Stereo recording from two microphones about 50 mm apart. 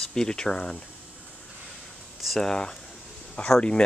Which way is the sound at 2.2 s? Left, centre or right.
Centre.